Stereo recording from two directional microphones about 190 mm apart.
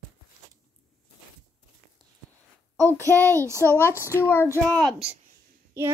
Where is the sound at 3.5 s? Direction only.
15° right (ahead or behind).